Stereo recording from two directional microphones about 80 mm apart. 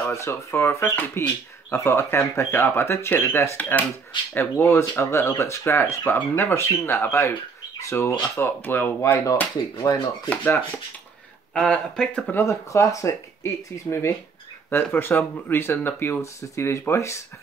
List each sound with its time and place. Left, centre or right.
0.0 s speech: left
9.8 s chopping: left
10.3 s speech: left
11.5 s speech: centre
12.4 s speech: left